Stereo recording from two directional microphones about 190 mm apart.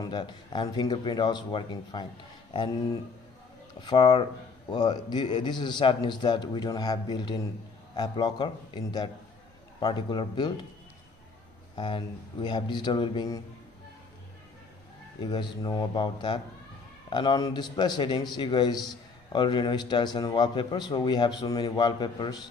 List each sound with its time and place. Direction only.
0.0 s a man's voice: 25° left (ahead or behind)
3.8 s a man's voice: 25° left (ahead or behind)
11.7 s a man's voice: 25° left (ahead or behind)
15.1 s a man's voice: 25° left (ahead or behind)